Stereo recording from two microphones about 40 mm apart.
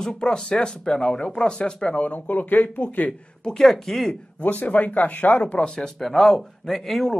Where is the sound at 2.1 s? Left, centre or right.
Left.